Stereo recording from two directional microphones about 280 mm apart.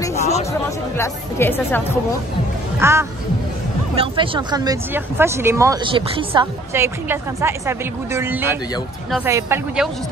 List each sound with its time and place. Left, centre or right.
0.2 s music: left
0.5 s speech: centre
2.8 s speech: centre